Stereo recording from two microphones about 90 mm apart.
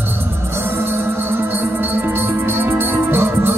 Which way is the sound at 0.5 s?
25° right (ahead or behind).